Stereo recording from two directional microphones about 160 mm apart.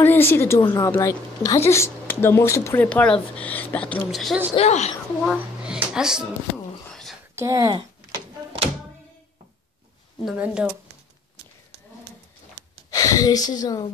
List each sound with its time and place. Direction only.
0.0 s speech: 15° left (ahead or behind)
0.6 s speech: 25° left (ahead or behind); by 4.4 s centre (ahead or behind)
4.6 s a woman's voice: 45° left (ahead or behind)
5.2 s speech: centre (ahead or behind)
6.9 s a sound: 5° left (ahead or behind)
7.3 s a woman's voice: 20° right (ahead or behind)
10.2 s speech: 5° right (ahead or behind)
12.9 s speech: 20° left (ahead or behind)